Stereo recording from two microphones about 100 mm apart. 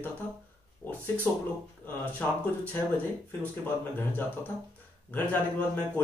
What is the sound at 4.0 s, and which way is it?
A man's voice, 20° left (ahead or behind).